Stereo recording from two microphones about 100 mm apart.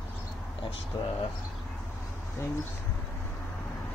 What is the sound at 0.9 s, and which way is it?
Speech, 45° left (ahead or behind).